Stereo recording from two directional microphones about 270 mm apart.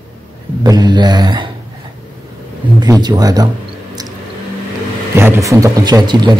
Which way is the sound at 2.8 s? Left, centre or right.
Centre.